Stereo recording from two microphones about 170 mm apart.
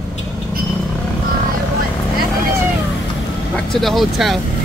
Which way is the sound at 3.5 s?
Centre (ahead or behind).